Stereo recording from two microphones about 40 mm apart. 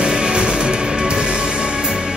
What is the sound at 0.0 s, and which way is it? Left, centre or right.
Music, right.